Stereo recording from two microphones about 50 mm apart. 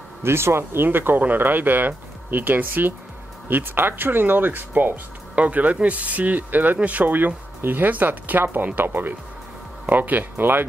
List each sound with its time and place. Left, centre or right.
0.2 s speech: right
0.8 s speech: right